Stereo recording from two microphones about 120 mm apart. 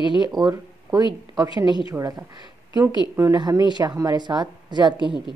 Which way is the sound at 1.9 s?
25° right (ahead or behind).